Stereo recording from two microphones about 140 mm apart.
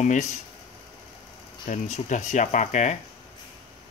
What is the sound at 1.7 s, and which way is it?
Speech, 60° left (ahead or behind).